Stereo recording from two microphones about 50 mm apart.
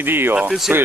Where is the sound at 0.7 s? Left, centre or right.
Right.